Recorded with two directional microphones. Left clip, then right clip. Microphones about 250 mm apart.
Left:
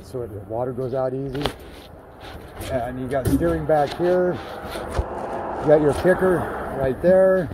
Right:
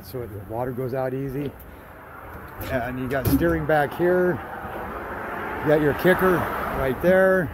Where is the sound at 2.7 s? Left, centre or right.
Centre.